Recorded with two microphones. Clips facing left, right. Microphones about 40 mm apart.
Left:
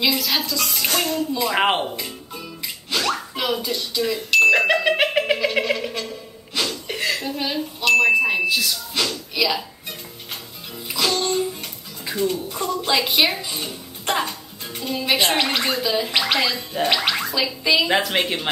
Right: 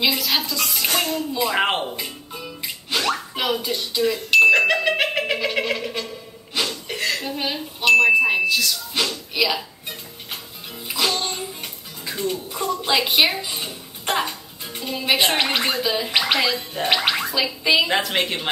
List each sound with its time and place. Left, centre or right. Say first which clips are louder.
0.0 s speech: even; centre
0.5 s music: even; centre
1.4 s a woman's voice: left 1 dB; centre
2.0 s music: even; centre
4.5 s a sound: even; centre
6.9 s a sound: left 1 dB; centre
8.0 s speech: right 1 dB; centre
8.5 s speech: right 1 dB; centre
8.9 s speech: left 1 dB; centre
9.5 s music: left 1 dB; centre
12.0 s music: left 4 dB; centre
12.5 s speech: right 2 dB; centre
17.8 s a woman's voice: left 1 dB; centre